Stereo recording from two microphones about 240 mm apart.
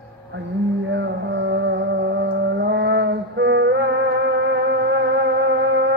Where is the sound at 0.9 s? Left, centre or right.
Right.